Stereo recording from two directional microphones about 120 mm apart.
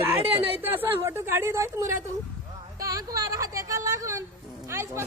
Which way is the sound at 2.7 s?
30° right (ahead or behind).